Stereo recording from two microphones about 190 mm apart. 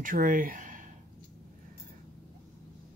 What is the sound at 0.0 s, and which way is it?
Speech, 45° right (ahead or behind).